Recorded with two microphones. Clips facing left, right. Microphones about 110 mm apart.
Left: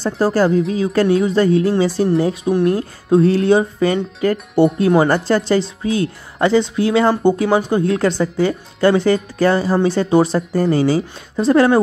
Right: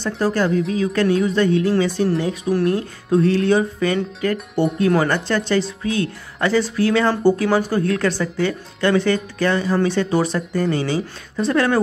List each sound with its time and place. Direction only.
0.0 s speech: 35° left (ahead or behind)